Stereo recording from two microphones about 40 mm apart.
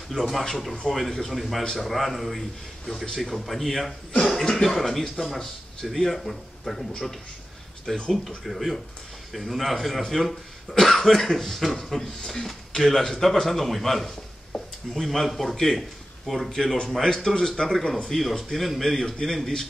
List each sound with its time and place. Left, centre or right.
0.1 s speech: centre
7.9 s speech: centre
8.5 s speech: centre
18.5 s speech: centre